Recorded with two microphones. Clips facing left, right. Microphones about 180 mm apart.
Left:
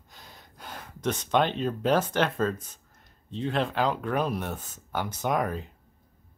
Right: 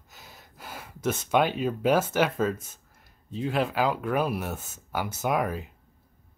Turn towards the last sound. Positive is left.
turn(degrees=-5)  # may be behind; listen again after turning